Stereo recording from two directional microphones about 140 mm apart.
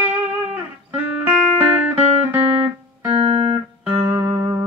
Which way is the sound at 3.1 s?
40° right (ahead or behind).